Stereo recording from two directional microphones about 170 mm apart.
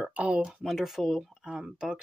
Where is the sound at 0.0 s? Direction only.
10° right (ahead or behind).